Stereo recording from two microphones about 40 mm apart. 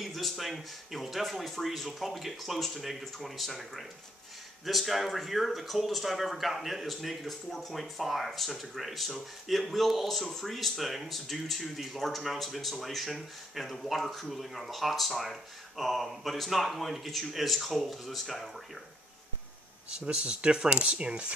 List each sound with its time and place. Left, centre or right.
0.0 s speech: centre
19.9 s speech: right